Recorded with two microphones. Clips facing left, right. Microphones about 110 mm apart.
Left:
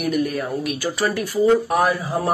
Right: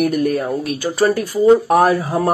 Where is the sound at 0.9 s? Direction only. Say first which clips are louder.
Right 8 dB; 30° right (ahead or behind).